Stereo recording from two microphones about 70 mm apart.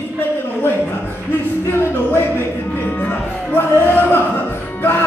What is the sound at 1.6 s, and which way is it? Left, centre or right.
Music, left.